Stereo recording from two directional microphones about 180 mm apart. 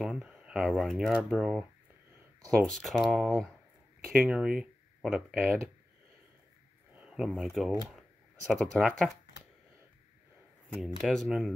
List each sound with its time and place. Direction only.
0.0 s speech: 5° right (ahead or behind)
6.9 s speech: 5° right (ahead or behind)
8.7 s speech: centre (ahead or behind)
10.8 s speech: centre (ahead or behind)